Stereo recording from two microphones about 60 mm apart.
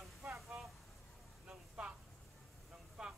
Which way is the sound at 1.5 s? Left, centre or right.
Centre.